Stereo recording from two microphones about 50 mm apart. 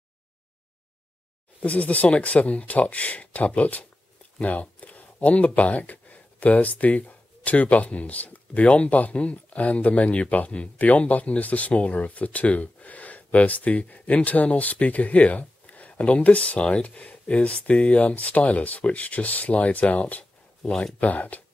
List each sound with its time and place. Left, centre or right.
1.6 s speech: left
20.6 s speech: centre
21.0 s speech: left